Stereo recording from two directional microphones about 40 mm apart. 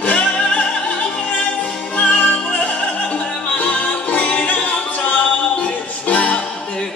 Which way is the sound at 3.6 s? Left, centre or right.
Left.